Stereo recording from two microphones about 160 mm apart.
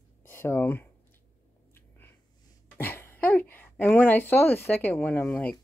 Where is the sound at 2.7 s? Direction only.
15° left (ahead or behind).